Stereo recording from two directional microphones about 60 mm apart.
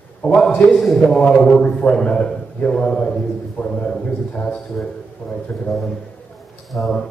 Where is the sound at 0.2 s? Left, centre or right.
Centre.